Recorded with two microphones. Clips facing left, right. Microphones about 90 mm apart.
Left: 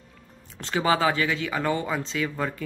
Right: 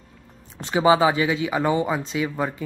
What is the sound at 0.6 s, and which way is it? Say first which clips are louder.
Speech: right 6 dB; 20° right (ahead or behind).